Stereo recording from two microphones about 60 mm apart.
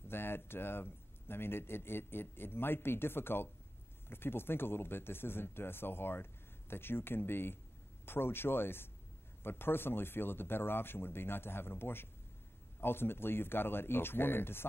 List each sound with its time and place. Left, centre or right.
0.1 s speech: left